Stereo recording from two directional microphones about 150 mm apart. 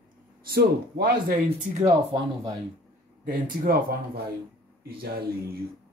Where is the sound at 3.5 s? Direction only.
80° right.